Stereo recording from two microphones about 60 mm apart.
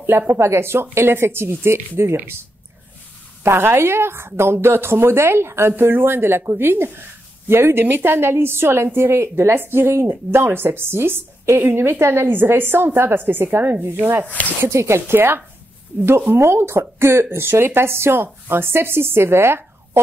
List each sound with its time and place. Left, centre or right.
0.3 s speech: right
3.4 s a woman's voice: right
14.2 s speech: left
14.6 s speech: right